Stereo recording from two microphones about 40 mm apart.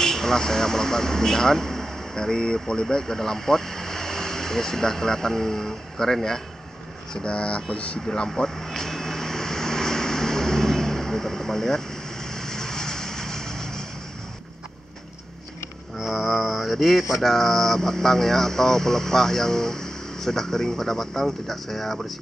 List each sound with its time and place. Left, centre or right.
0.0 s speech: centre
7.2 s speech: left
8.3 s vehicle: centre
16.0 s mantra: centre